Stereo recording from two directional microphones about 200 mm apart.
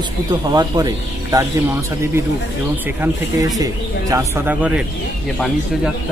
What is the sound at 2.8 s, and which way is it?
Speech, 15° right (ahead or behind).